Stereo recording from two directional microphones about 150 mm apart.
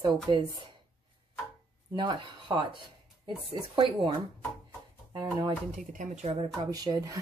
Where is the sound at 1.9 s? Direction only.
30° right (ahead or behind).